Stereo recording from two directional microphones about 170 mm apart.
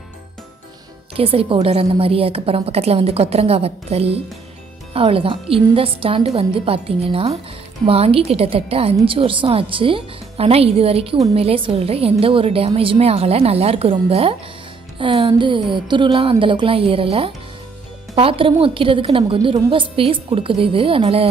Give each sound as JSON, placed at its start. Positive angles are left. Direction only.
{"t": 1.1, "sound": "a woman's voice", "side_deg": -35}